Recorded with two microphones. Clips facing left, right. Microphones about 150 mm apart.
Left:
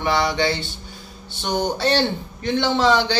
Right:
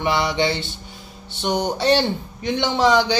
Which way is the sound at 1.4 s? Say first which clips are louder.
Right 1 dB; 20° right (ahead or behind).